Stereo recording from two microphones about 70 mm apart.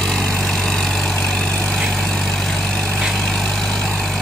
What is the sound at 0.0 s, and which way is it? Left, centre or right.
Vehicle, centre.